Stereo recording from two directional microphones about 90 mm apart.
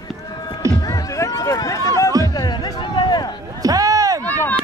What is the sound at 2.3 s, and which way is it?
Music, 50° left (ahead or behind).